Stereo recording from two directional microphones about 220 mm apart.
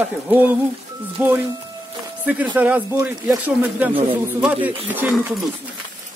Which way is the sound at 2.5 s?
5° right (ahead or behind).